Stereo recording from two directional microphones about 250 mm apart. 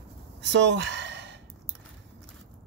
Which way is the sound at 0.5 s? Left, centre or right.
Right.